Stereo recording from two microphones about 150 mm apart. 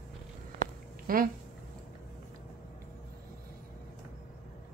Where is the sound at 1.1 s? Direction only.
75° right (ahead or behind).